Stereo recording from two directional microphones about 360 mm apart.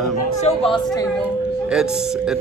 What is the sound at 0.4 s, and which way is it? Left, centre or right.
Speech, centre.